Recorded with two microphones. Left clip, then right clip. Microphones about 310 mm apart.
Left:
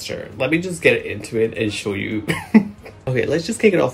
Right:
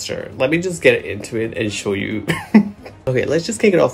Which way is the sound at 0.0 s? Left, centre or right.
Centre.